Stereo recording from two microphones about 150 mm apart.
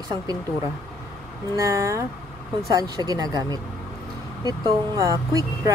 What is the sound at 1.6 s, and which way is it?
Speech, 20° right (ahead or behind).